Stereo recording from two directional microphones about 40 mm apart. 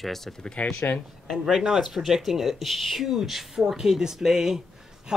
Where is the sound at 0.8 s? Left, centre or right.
Left.